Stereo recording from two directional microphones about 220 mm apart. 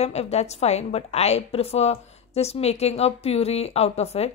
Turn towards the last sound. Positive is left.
turn(degrees=30)  # may be behind; listen again after turning